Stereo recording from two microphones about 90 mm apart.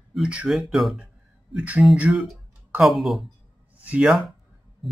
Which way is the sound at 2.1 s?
Centre (ahead or behind).